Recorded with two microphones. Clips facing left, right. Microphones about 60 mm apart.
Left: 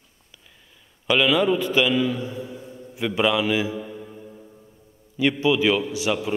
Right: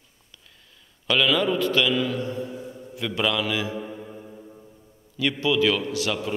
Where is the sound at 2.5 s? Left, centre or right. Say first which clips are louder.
Right 2 dB; centre.